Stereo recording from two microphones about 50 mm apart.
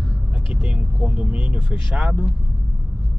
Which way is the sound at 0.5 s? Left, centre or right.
Centre.